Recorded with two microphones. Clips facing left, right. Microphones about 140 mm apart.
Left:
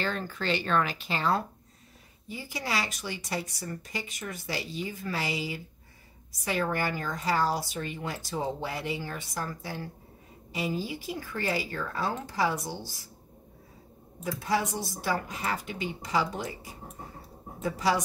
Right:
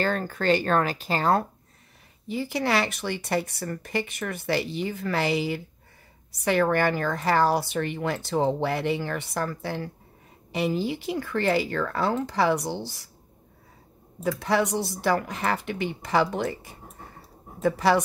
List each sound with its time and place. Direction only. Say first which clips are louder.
0.0 s speech: right 6 dB; 45° right (ahead or behind)
2.2 s speech: right 9 dB; 70° right (ahead or behind)
14.4 s speech: right 4 dB; 70° right (ahead or behind)